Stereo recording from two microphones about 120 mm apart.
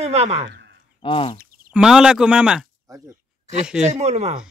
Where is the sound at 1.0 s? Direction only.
50° left (ahead or behind).